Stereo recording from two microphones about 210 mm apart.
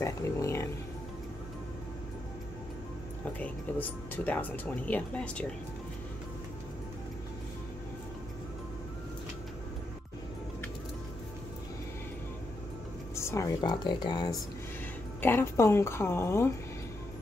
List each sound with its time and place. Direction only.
0.0 s speech: 15° left (ahead or behind)
3.3 s speech: 5° left (ahead or behind)
13.1 s speech: 15° left (ahead or behind)